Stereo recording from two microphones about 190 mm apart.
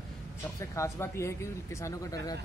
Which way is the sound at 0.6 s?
15° left (ahead or behind).